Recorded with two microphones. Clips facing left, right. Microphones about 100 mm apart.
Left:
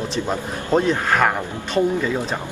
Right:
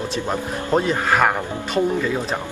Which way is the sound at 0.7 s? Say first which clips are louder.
Left 1 dB; 5° right (ahead or behind).